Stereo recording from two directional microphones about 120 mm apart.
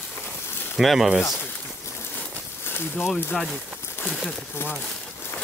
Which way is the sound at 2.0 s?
20° left (ahead or behind).